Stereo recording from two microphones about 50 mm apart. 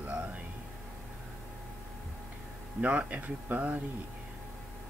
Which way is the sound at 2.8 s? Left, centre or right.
Right.